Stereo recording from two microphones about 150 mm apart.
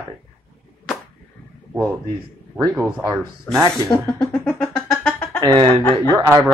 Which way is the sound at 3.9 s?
15° left (ahead or behind).